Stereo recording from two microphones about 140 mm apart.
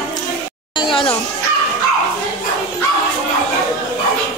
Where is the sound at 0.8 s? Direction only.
35° left (ahead or behind).